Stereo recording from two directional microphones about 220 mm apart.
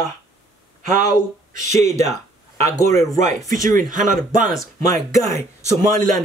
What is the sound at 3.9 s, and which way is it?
Speech, 40° right (ahead or behind).